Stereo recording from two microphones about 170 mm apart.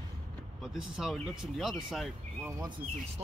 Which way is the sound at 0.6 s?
5° right (ahead or behind).